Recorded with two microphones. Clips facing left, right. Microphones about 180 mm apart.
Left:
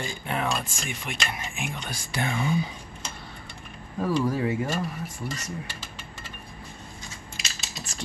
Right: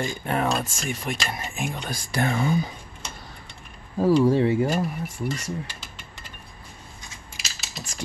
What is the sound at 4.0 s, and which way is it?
Speech, 30° right (ahead or behind).